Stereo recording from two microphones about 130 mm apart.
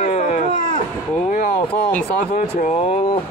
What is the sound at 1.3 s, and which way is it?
Speech, 85° left.